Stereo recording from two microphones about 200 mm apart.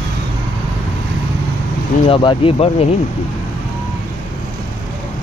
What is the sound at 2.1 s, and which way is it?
Speech, 25° left (ahead or behind).